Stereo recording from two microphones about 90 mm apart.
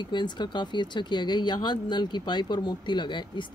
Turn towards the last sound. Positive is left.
turn(degrees=55)  # may be behind; listen again after turning